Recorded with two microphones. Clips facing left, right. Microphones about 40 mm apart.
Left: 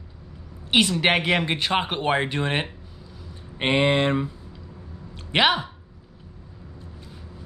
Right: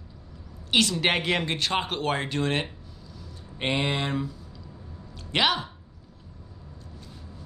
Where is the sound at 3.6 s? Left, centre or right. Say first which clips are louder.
Left 7 dB; left.